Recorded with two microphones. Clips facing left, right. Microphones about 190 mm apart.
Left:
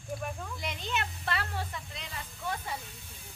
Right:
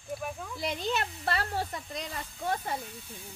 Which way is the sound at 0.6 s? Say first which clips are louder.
Right 6 dB; 35° right (ahead or behind).